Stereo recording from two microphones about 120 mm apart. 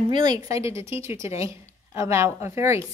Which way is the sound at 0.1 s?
35° right (ahead or behind).